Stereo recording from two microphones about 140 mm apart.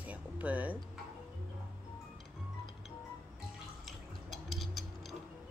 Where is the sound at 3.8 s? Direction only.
Centre (ahead or behind).